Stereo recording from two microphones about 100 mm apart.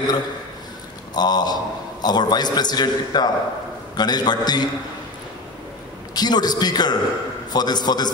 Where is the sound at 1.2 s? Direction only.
45° left (ahead or behind).